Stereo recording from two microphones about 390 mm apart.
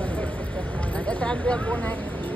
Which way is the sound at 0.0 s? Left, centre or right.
Centre.